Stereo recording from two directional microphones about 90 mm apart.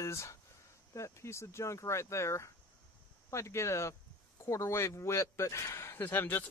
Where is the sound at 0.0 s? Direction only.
30° left (ahead or behind).